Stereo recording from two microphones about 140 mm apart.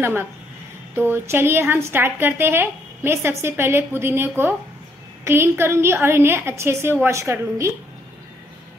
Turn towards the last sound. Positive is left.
turn(degrees=-20)  # may be behind; listen again after turning